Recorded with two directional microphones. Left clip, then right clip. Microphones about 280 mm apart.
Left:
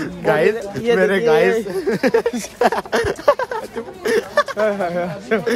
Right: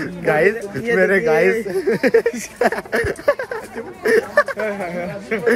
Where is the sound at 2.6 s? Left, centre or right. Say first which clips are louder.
Left 1 dB; centre.